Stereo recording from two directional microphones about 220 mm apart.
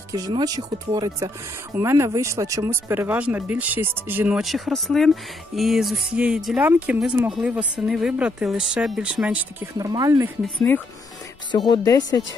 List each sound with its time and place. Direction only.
0.1 s speech: 20° right (ahead or behind)
11.5 s speech: 20° left (ahead or behind)